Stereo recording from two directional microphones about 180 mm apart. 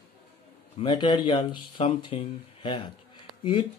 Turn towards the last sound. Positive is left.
turn(degrees=25)  # may be behind; listen again after turning